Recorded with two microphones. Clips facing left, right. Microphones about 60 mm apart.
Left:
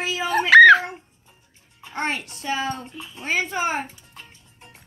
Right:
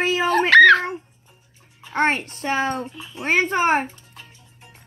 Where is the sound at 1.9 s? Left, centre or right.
Right.